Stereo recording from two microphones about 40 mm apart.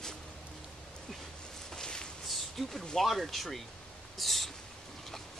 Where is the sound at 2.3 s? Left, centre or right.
Centre.